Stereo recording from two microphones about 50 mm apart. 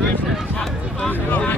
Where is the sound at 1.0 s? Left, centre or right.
Left.